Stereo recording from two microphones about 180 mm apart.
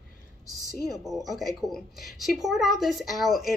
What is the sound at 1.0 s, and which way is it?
A woman's voice, centre (ahead or behind).